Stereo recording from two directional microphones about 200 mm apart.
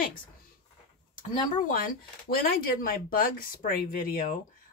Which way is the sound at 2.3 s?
45° left (ahead or behind).